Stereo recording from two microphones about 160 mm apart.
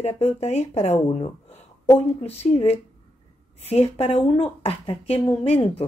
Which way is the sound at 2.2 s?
40° left (ahead or behind).